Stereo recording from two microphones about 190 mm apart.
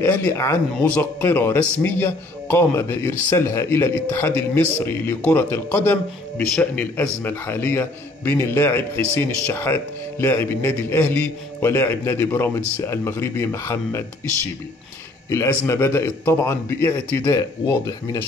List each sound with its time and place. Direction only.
0.0 s speech: 15° left (ahead or behind)
15.2 s speech: 15° left (ahead or behind)